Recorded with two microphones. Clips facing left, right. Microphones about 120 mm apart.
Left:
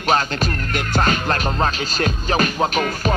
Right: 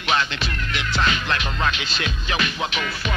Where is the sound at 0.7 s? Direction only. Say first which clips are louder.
Left 3 dB; 45° left (ahead or behind).